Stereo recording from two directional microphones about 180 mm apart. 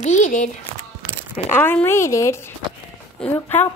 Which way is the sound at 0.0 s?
40° left (ahead or behind).